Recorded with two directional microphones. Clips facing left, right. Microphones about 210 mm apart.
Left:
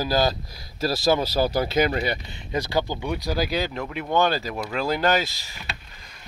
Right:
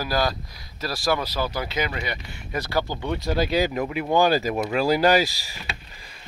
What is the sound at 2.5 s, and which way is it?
Speech, 15° left (ahead or behind).